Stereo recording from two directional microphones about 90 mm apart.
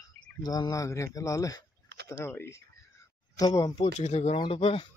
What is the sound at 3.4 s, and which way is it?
Speech, 45° left (ahead or behind).